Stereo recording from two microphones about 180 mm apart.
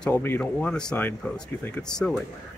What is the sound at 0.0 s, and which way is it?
Speech, 10° left (ahead or behind).